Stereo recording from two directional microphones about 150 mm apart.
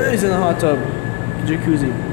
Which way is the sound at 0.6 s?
35° left (ahead or behind).